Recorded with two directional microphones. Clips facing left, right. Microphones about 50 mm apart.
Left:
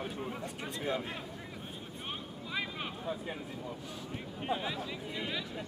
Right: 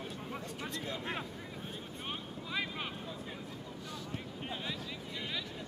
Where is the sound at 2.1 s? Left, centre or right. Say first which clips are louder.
Even; centre.